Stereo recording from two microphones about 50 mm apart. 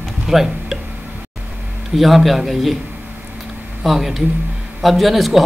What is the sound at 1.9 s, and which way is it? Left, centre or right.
Speech, centre.